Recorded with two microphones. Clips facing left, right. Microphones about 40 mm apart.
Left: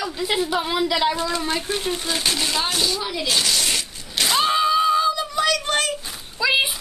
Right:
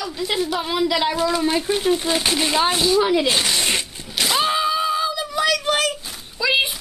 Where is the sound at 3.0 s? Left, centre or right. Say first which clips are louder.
Right 5 dB; right.